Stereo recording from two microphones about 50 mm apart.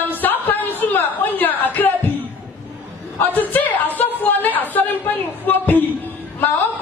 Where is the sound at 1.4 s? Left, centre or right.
Left.